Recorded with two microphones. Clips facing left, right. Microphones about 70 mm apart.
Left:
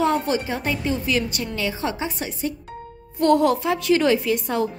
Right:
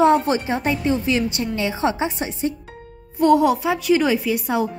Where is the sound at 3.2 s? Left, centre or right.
Centre.